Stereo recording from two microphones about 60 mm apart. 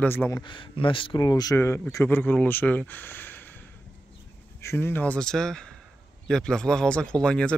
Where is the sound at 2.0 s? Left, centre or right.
Left.